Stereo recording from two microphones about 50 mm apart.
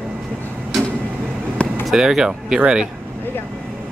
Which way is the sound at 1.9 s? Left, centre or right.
Centre.